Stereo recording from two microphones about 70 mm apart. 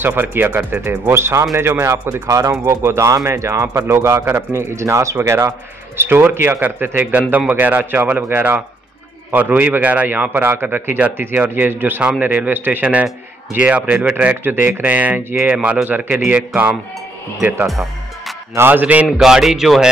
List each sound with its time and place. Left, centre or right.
0.0 s speech: right
2.2 s a man's voice: right
17.6 s music: centre
18.7 s a man's voice: right
19.1 s speech: centre